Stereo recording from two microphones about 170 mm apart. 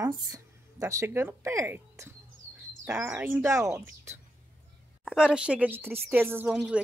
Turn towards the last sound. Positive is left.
turn(degrees=-5)  # may be behind; listen again after turning